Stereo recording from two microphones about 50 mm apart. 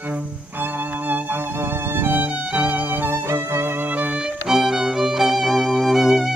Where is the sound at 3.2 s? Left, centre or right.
Right.